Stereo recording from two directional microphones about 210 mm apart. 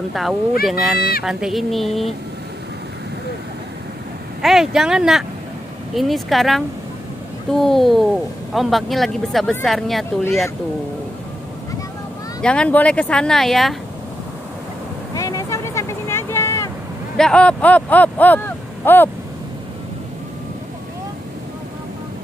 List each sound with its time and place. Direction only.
0.1 s speech: centre (ahead or behind)
0.9 s speech: 45° left (ahead or behind)
1.2 s speech: centre (ahead or behind)
4.4 s speech: centre (ahead or behind)
12.4 s speech: 5° left (ahead or behind)
15.1 s vehicle: 15° left (ahead or behind)
17.2 s speech: 5° left (ahead or behind)